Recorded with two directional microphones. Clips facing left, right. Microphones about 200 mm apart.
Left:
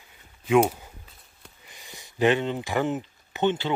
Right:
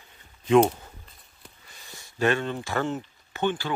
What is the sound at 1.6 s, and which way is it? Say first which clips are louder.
Speech: left 3 dB; 15° left (ahead or behind).